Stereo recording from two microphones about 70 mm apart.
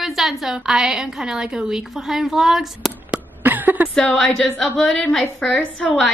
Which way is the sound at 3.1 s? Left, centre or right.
Right.